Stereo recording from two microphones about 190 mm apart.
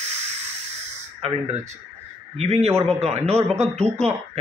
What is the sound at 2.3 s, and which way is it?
Speech, 35° right (ahead or behind).